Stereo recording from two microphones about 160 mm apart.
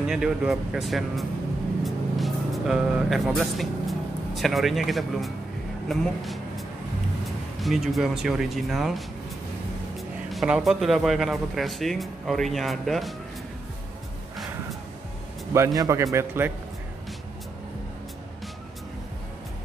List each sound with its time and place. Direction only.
0.0 s speech: 5° right (ahead or behind)
7.6 s speech: centre (ahead or behind)
10.3 s speech: 5° right (ahead or behind)
15.5 s a man's voice: 20° right (ahead or behind)